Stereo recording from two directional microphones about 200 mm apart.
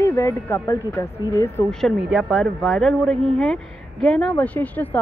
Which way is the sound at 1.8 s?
5° right (ahead or behind).